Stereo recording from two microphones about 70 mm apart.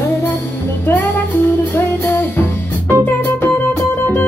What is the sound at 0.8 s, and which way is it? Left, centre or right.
Music, left.